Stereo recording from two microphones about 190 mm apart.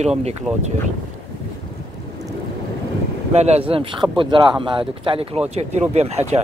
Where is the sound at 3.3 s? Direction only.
35° right (ahead or behind).